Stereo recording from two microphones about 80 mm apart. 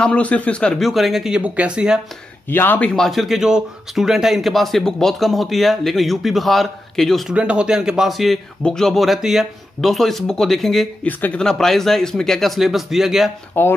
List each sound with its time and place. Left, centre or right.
0.0 s speech: centre
0.7 s speech: centre
1.4 s speech: centre
2.5 s speech: left
2.8 s speech: centre
3.1 s speech: centre
7.2 s speech: centre
11.1 s speech: left
11.3 s speech: centre
13.5 s speech: left